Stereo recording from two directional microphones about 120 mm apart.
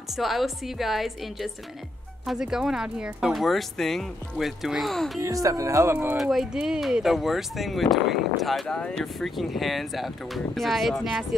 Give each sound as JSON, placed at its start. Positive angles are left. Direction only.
{"t": 0.1, "sound": "speech", "side_deg": 0}
{"t": 5.2, "sound": "speech", "side_deg": -30}
{"t": 6.2, "sound": "speech", "side_deg": -5}